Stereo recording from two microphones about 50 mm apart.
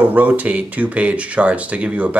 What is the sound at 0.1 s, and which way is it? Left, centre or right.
Speech, right.